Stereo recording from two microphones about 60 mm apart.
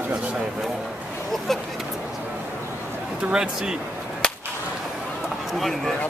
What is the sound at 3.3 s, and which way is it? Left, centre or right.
Speech, centre.